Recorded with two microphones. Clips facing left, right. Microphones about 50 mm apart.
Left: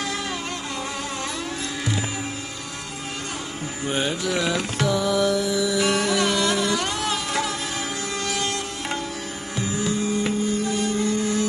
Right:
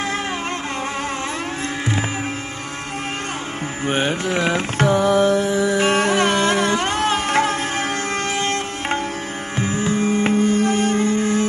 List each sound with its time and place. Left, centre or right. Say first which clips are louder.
3.8 s music: right 4 dB; right